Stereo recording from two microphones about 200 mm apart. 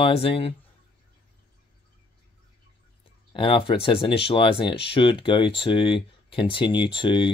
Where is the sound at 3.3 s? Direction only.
25° left (ahead or behind).